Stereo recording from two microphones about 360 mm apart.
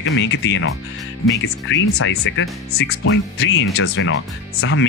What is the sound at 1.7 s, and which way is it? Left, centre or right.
Speech, left.